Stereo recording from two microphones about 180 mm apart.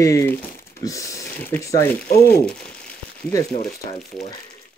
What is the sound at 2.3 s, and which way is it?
Crumpling, 5° left (ahead or behind).